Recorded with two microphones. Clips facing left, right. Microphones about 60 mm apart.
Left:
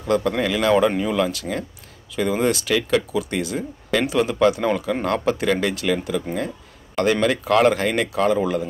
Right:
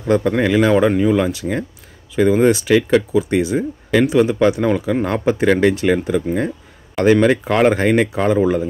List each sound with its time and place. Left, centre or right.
0.0 s speech: centre
5.3 s speech: right